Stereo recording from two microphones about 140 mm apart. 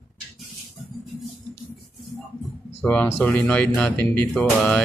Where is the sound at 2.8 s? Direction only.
10° left (ahead or behind).